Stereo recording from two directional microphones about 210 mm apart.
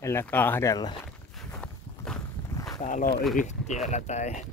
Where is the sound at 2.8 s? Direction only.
35° left (ahead or behind).